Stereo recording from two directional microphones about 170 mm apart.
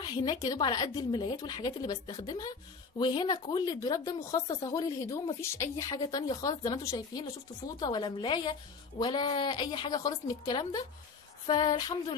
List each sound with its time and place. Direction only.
0.0 s a woman's voice: 25° left (ahead or behind)